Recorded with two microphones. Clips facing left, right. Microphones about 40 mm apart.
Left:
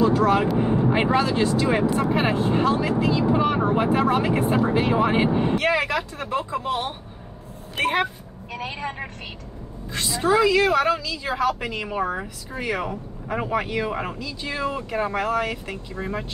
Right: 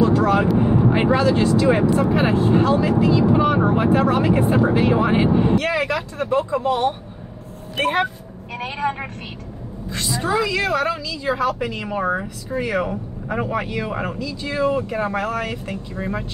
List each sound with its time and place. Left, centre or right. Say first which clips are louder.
0.3 s vehicle: right 3 dB; centre
1.1 s speech: right 4 dB; centre
6.6 s speech: right 7 dB; centre
8.5 s a woman's voice: right 6 dB; right
9.9 s speech: left 1 dB; centre
14.4 s speech: right 5 dB; centre
14.7 s speech: right 4 dB; centre